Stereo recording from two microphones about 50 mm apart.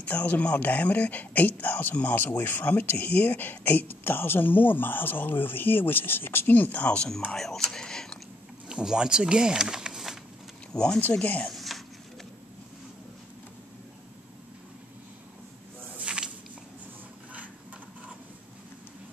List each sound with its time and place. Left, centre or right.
0.0 s speech: left
6.4 s speech: left
7.3 s speech: centre
8.6 s speech: centre
10.7 s speech: centre
11.4 s a sound: centre
16.0 s a sound: right